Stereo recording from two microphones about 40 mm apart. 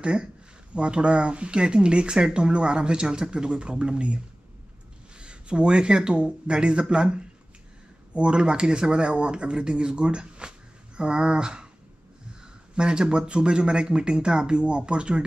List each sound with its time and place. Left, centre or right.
0.0 s speech: right
5.2 s speech: right
12.7 s speech: right